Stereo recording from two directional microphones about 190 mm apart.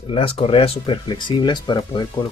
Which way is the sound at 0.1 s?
30° left (ahead or behind).